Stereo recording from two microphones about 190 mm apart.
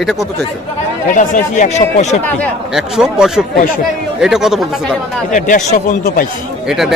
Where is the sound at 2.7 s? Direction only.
5° right (ahead or behind).